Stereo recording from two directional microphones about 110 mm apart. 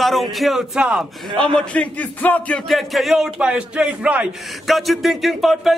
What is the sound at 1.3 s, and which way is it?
Speech, 5° left (ahead or behind).